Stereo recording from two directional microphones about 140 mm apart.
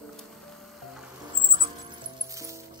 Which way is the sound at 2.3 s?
25° right (ahead or behind).